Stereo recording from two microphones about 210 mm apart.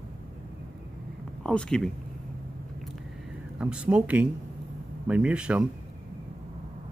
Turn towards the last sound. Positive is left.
turn(degrees=-5)  # may be behind; listen again after turning